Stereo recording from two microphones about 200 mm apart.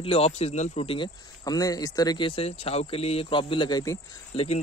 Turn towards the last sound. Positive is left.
turn(degrees=30)  # may be behind; listen again after turning